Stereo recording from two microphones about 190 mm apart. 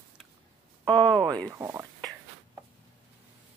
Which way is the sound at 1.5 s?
15° right (ahead or behind).